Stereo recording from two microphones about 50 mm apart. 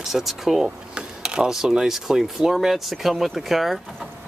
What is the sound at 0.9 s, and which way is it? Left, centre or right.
Speech, centre.